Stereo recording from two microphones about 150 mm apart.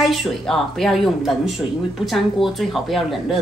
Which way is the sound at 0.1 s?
Centre (ahead or behind).